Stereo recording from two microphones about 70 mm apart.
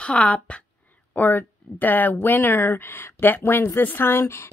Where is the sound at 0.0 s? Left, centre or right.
Centre.